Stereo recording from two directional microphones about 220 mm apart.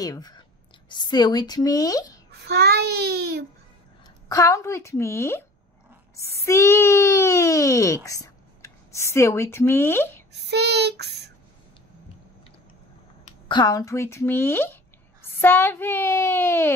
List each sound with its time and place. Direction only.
0.0 s a woman's voice: 15° left (ahead or behind)
2.4 s child singing: 45° right (ahead or behind)
4.3 s speech: 15° left (ahead or behind)
10.3 s child singing: 50° right (ahead or behind)
13.5 s speech: 20° left (ahead or behind)